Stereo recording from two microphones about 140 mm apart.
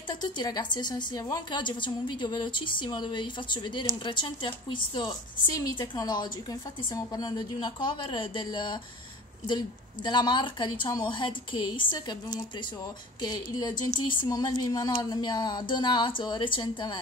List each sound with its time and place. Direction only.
0.1 s a woman's voice: 30° left (ahead or behind)
10.0 s a woman's voice: 30° left (ahead or behind)